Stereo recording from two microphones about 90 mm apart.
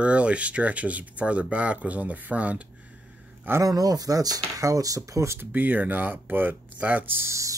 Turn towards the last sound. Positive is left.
turn(degrees=-35)  # may be behind; listen again after turning